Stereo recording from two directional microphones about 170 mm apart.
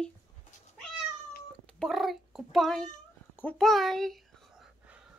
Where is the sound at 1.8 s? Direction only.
Centre (ahead or behind).